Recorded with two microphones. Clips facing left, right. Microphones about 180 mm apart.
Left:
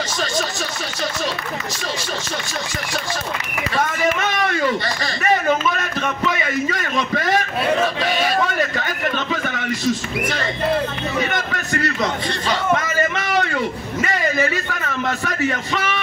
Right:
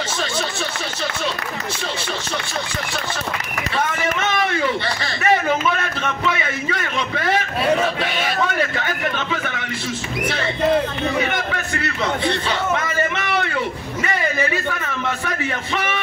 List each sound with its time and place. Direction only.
4.5 s a sound: 40° left (ahead or behind)
11.3 s a man's voice: 40° left (ahead or behind)
15.0 s a man's voice: 40° left (ahead or behind)